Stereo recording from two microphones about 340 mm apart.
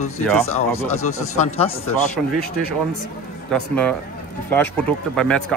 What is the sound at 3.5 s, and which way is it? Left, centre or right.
Speech, centre.